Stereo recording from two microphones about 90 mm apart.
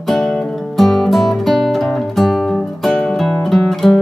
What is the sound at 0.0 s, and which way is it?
Music, centre (ahead or behind).